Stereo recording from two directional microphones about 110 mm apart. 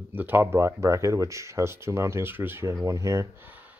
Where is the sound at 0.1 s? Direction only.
15° right (ahead or behind).